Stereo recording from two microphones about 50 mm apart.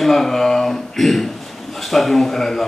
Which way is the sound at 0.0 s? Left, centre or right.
Centre.